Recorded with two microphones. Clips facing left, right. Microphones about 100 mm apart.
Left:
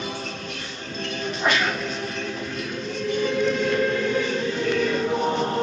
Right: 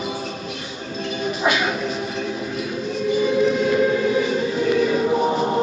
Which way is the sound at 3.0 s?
5° right (ahead or behind).